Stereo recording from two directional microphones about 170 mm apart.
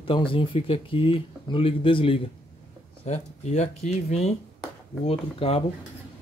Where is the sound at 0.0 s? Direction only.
30° left (ahead or behind).